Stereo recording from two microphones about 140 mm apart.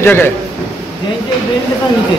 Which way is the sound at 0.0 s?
15° left (ahead or behind).